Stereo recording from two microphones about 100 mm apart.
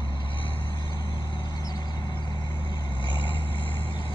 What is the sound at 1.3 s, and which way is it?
Vehicle, 45° left (ahead or behind).